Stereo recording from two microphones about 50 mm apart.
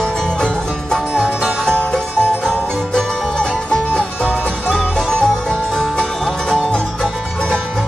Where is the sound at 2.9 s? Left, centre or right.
Centre.